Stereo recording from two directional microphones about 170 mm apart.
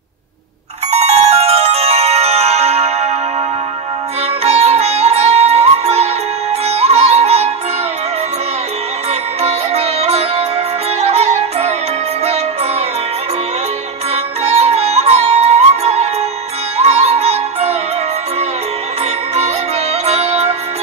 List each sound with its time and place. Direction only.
0.9 s music: 40° right (ahead or behind)
4.4 s music: 40° right (ahead or behind)
9.4 s music: 35° right (ahead or behind)
14.1 s music: 35° right (ahead or behind)
20.1 s music: 35° right (ahead or behind)